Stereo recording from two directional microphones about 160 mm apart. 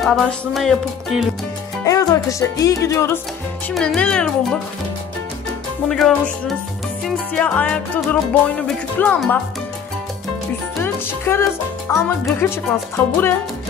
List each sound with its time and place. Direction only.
0.0 s speech: centre (ahead or behind)
1.9 s music: 20° left (ahead or behind)
3.7 s speech: 5° left (ahead or behind)
5.9 s speech: 5° left (ahead or behind)
10.8 s music: 15° left (ahead or behind)
11.9 s speech: 15° left (ahead or behind)